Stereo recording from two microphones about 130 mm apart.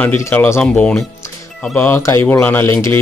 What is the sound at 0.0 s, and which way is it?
Speech, 15° left (ahead or behind).